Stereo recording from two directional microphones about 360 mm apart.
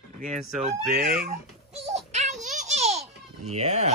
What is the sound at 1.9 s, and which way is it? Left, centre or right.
Child singing, centre.